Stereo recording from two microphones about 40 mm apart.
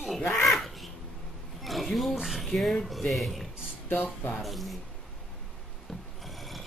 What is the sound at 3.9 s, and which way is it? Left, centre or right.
Speech, left.